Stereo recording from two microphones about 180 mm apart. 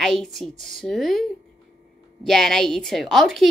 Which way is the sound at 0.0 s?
Centre (ahead or behind).